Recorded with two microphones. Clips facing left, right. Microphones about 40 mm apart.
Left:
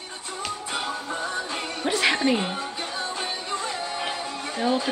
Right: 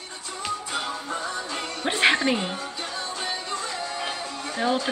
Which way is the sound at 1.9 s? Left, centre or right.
Right.